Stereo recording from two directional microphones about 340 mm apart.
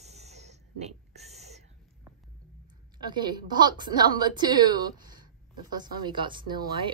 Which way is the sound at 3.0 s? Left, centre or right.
Centre.